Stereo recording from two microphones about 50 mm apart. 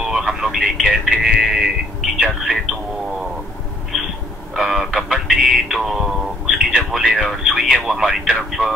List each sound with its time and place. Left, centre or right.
0.0 s a sound: centre
2.2 s speech: centre
4.6 s music: centre
5.8 s radio: centre
7.0 s speech: centre